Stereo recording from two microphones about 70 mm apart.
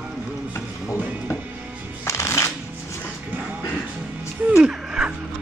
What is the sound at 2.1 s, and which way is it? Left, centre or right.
Shuffling cards, left.